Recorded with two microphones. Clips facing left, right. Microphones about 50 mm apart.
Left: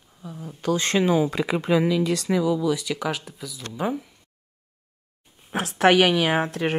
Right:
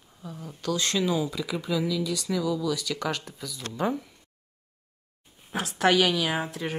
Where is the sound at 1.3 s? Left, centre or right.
Left.